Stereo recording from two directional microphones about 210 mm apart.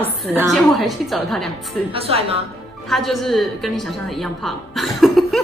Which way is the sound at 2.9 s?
Centre (ahead or behind).